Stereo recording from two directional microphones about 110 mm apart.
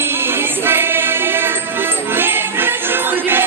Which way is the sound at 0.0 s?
20° right (ahead or behind).